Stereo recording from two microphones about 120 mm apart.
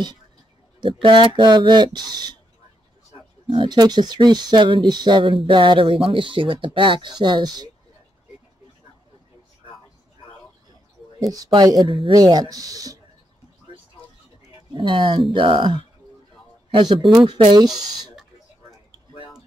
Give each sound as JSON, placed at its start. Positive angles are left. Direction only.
{"t": 0.7, "sound": "speech", "side_deg": -40}
{"t": 3.4, "sound": "speech", "side_deg": -40}
{"t": 11.3, "sound": "speech", "side_deg": -35}
{"t": 11.8, "sound": "speech", "side_deg": -45}
{"t": 12.1, "sound": "speech", "side_deg": -35}
{"t": 14.7, "sound": "speech", "side_deg": -40}